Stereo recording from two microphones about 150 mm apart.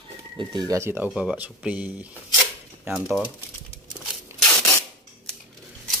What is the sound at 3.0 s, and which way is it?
Speech, centre (ahead or behind).